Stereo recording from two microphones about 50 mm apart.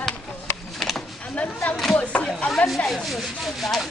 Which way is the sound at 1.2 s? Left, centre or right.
Left.